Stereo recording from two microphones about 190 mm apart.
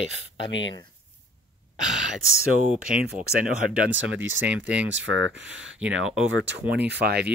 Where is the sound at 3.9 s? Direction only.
85° right.